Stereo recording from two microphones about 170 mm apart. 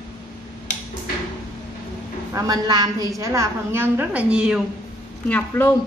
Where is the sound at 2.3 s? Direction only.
20° right (ahead or behind); by 4.5 s 5° right (ahead or behind).